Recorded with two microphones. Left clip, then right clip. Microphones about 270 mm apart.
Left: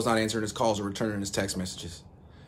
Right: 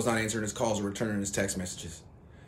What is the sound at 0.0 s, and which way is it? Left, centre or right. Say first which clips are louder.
A man's voice: left 3 dB; centre.